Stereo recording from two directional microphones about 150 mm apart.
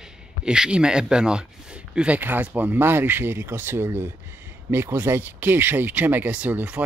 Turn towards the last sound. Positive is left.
turn(degrees=-10)  # may be behind; listen again after turning